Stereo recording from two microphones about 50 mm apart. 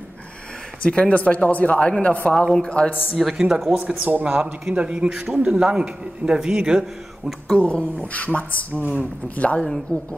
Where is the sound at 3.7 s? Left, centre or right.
Right.